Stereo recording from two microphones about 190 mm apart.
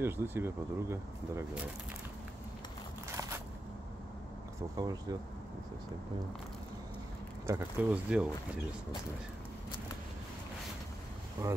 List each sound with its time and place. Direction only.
0.0 s speech: 10° right (ahead or behind)
4.7 s speech: 20° right (ahead or behind)
7.4 s speech: 10° right (ahead or behind)
11.4 s speech: 15° right (ahead or behind)